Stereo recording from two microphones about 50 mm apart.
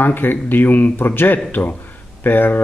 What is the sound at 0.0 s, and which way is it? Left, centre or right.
Speech, left.